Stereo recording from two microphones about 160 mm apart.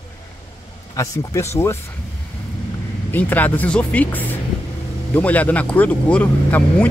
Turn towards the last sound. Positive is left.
turn(degrees=10)  # may be behind; listen again after turning